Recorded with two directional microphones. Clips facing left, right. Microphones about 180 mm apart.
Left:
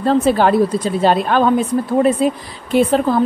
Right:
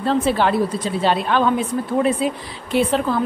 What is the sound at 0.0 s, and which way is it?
A woman's voice, 45° left (ahead or behind).